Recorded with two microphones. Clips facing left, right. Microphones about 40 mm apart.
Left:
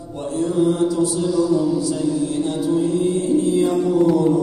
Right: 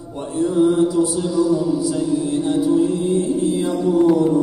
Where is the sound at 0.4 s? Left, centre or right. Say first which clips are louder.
Right 2 dB; centre.